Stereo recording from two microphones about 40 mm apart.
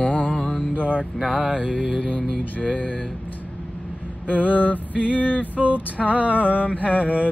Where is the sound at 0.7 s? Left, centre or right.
Right.